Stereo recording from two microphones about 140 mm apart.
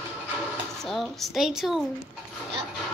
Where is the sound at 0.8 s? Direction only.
Centre (ahead or behind).